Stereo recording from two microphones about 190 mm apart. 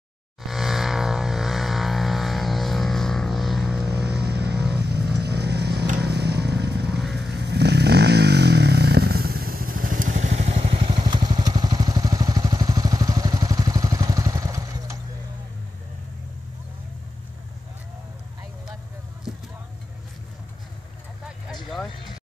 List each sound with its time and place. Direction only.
0.4 s a sound: centre (ahead or behind)
4.0 s vehicle: 60° right (ahead or behind)
7.0 s vehicle: centre (ahead or behind)
7.2 s vehicle: 60° right (ahead or behind); by 15.0 s 15° right (ahead or behind)
21.5 s vehicle: centre (ahead or behind)